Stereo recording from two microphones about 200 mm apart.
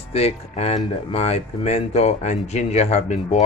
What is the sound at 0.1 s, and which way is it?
Speech, 30° left (ahead or behind).